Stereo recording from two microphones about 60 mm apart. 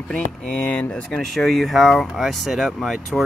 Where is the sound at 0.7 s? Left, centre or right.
Centre.